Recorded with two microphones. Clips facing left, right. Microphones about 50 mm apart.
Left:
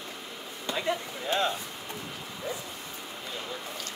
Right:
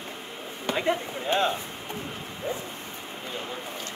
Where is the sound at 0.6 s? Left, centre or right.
Right.